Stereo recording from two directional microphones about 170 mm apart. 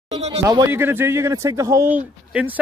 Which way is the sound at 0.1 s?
35° right (ahead or behind).